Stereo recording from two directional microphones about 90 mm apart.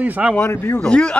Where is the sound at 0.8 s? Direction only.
10° left (ahead or behind).